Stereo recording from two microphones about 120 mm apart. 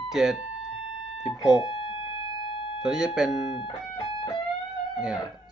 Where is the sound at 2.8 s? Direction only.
5° right (ahead or behind).